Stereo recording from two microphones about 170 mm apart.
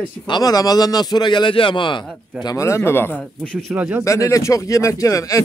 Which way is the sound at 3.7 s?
10° right (ahead or behind).